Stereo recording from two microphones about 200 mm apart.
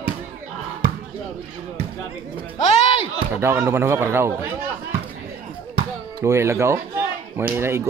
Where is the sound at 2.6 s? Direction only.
30° left (ahead or behind).